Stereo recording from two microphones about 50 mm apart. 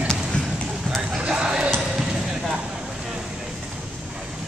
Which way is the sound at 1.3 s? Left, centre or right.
Centre.